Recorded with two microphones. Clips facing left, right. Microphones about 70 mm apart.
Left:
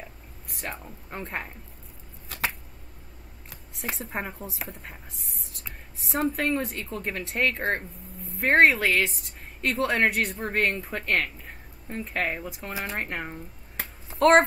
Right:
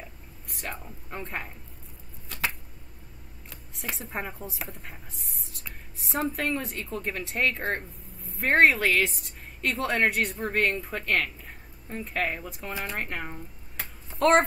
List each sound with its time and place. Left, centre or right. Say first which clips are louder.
0.5 s speech: left 1 dB; centre
3.9 s speech: left 1 dB; centre